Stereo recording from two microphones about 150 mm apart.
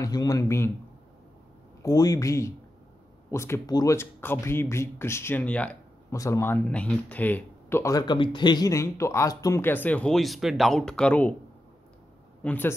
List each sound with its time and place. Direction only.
0.0 s speech: 25° left (ahead or behind)
1.8 s speech: 25° left (ahead or behind)
6.0 s speech: 20° left (ahead or behind)
12.4 s speech: 15° left (ahead or behind)